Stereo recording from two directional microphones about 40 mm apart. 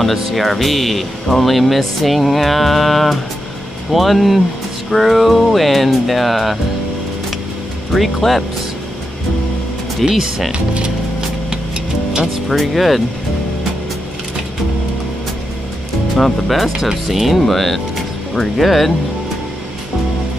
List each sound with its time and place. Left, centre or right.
0.0 s speech: centre
7.9 s speech: centre
10.0 s speech: centre
10.5 s music: right
12.4 s speech: centre
16.2 s speech: centre